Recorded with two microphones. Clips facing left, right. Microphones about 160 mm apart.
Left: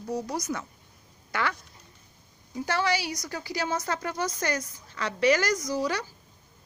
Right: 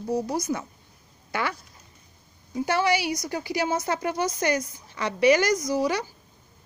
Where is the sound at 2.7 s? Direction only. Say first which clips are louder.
Right 4 dB; 15° right (ahead or behind).